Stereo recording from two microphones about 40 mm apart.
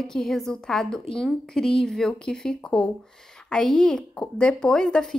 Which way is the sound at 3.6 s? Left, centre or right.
Centre.